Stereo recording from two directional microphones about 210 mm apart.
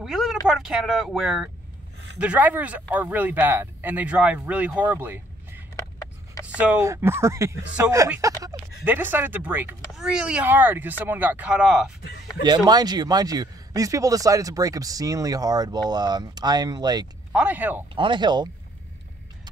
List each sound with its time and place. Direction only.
0.0 s a sound: centre (ahead or behind)
0.5 s a man's voice: centre (ahead or behind)
12.4 s a man's voice: 20° right (ahead or behind)
17.3 s a man's voice: 5° right (ahead or behind)
17.9 s speech: 25° right (ahead or behind)